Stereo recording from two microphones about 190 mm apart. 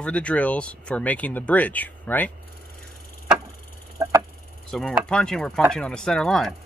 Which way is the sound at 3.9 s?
15° right (ahead or behind).